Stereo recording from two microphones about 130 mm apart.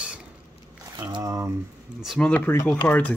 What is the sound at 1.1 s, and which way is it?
Speech, 25° right (ahead or behind).